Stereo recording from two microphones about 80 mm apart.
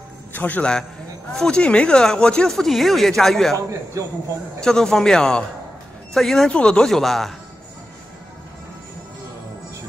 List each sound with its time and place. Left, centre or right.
0.3 s a man's voice: left
1.3 s speech: centre
4.0 s speech: right
4.6 s speech: centre